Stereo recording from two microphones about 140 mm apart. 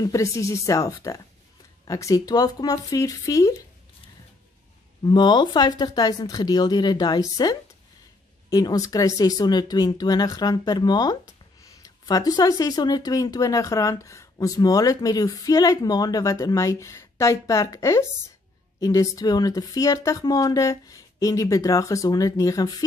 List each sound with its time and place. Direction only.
0.0 s speech: 20° left (ahead or behind)
5.0 s speech: 30° left (ahead or behind)